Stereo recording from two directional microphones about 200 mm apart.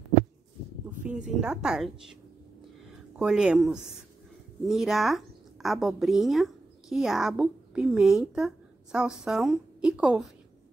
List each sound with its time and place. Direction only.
1.0 s a woman's voice: 5° right (ahead or behind)
3.2 s a woman's voice: 5° right (ahead or behind)